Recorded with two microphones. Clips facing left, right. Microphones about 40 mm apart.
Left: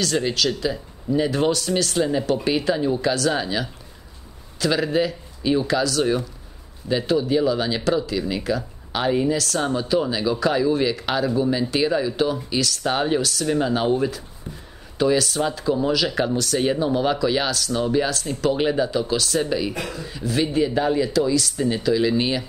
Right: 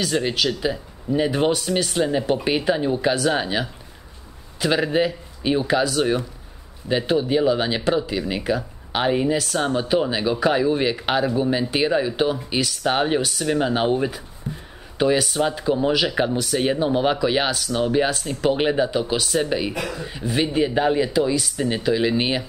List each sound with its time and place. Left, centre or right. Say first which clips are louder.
0.0 s speech: even; centre
14.5 s a sound: right 6 dB; centre
15.0 s speech: even; centre